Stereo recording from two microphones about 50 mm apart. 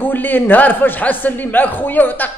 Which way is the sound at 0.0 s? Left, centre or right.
Left.